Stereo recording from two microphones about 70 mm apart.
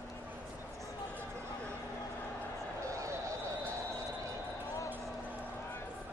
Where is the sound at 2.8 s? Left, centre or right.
Right.